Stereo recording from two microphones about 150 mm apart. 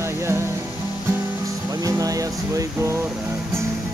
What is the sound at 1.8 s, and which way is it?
Music, 25° right (ahead or behind).